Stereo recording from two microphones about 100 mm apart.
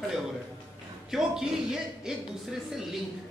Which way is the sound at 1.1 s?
5° right (ahead or behind).